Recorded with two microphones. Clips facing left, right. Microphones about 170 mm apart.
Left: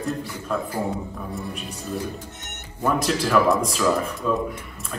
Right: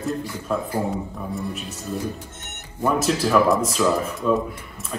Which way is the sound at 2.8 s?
5° right (ahead or behind).